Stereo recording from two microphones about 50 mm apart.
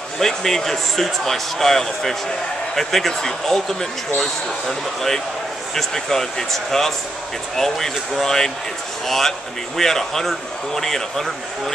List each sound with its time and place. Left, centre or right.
0.2 s speech: centre